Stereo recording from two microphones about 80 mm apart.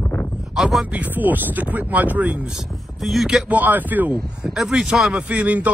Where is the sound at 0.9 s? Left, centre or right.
Right.